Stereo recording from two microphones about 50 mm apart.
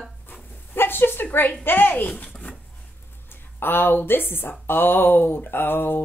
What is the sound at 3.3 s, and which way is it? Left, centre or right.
Speech, left.